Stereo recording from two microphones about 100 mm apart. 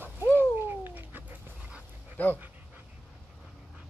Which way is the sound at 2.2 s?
20° left (ahead or behind).